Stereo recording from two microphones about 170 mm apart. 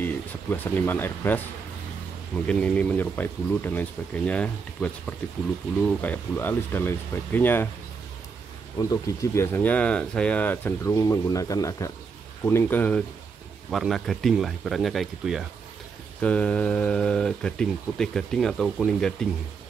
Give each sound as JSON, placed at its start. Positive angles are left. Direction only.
{"t": 0.0, "sound": "speech", "side_deg": 10}
{"t": 2.4, "sound": "speech", "side_deg": 5}
{"t": 8.8, "sound": "speech", "side_deg": 20}